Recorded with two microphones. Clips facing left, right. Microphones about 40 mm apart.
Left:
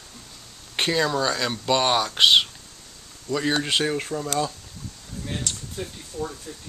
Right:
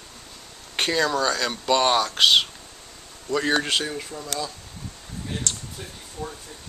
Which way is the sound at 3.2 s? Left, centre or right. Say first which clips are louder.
Right 1 dB; centre.